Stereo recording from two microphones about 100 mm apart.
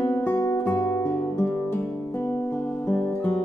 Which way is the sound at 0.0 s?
15° left (ahead or behind).